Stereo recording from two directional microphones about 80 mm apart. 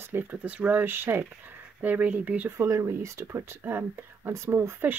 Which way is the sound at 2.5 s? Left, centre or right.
Right.